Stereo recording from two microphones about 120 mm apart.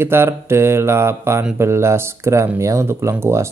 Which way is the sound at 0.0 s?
20° right (ahead or behind).